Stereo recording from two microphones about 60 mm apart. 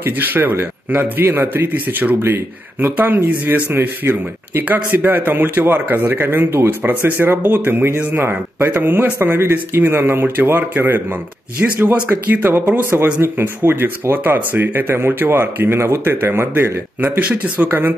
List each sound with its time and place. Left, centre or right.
0.0 s speech: right